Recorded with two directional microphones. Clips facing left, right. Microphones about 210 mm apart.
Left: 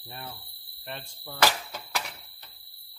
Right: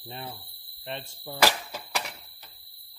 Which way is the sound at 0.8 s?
15° right (ahead or behind).